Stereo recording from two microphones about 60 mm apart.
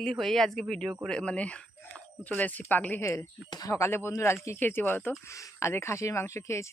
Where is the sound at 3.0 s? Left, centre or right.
Left.